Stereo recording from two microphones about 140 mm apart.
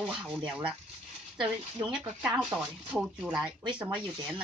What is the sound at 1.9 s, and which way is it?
Speech, 10° right (ahead or behind).